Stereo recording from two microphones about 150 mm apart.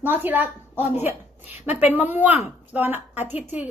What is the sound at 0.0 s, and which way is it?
A woman's voice, 15° right (ahead or behind).